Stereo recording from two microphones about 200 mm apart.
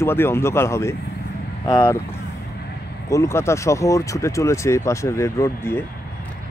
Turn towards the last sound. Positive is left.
turn(degrees=15)  # may be behind; listen again after turning